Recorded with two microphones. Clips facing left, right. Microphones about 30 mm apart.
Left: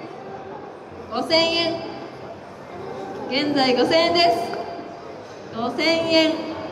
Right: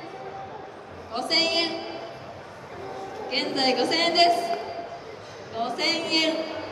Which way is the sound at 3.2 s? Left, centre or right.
Centre.